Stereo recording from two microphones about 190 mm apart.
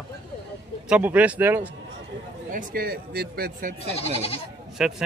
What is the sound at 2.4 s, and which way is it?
A man's voice, 50° right (ahead or behind).